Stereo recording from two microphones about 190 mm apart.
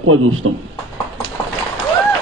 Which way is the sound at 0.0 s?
90° right.